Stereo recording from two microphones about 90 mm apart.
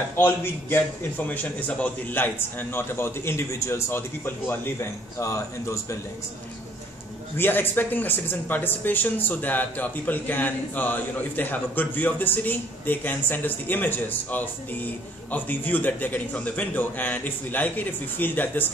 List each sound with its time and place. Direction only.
0.1 s speech: 25° left (ahead or behind)
5.2 s speech: 35° left (ahead or behind)
7.3 s speech: 25° left (ahead or behind)